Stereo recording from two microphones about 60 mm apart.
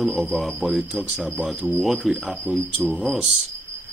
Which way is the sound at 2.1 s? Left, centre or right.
Centre.